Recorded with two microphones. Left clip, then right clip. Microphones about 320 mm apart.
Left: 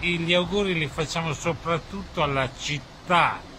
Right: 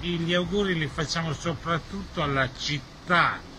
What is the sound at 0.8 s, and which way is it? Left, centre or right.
A man's voice, centre.